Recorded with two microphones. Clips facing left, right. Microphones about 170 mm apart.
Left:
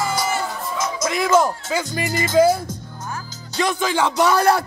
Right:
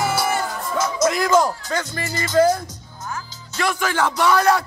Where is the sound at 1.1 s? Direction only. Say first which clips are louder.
Left 2 dB; centre (ahead or behind).